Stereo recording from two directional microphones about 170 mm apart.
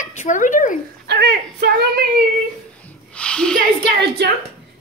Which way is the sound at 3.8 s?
70° right (ahead or behind).